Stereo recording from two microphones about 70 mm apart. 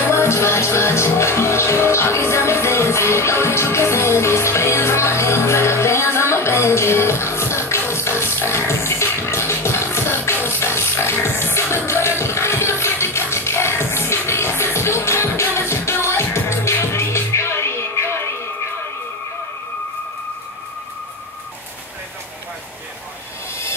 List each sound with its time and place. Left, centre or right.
0.1 s music: left